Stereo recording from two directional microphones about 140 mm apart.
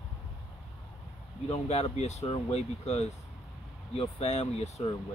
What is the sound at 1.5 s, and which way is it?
Speech, 50° left (ahead or behind).